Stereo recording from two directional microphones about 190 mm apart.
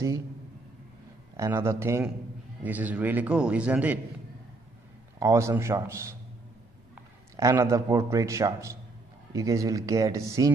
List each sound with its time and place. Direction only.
1.3 s a man's voice: 15° right (ahead or behind)
5.2 s a man's voice: 15° right (ahead or behind)
7.3 s a man's voice: 15° right (ahead or behind)